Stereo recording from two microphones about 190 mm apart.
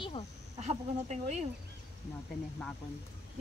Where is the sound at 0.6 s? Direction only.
35° right (ahead or behind).